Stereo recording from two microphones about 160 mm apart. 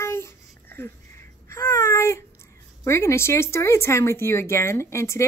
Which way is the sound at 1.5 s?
15° left (ahead or behind).